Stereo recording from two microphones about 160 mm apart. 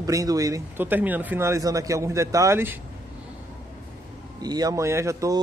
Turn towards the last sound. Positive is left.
turn(degrees=-20)  # may be behind; listen again after turning